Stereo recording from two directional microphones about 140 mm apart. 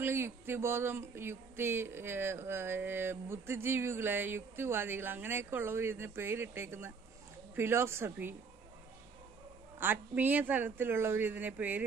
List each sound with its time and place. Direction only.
0.0 s speech: 15° right (ahead or behind)
9.8 s speech: 15° right (ahead or behind)